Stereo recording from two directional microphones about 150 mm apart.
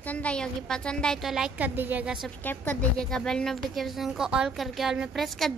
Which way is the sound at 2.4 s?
10° left (ahead or behind).